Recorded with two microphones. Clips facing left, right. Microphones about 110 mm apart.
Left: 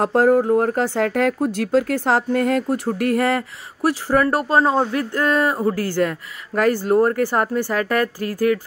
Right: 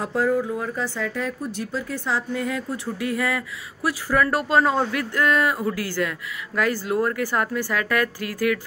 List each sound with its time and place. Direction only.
0.0 s speech: 60° left (ahead or behind)
4.2 s speech: 40° left (ahead or behind)
5.9 s speech: 45° left (ahead or behind)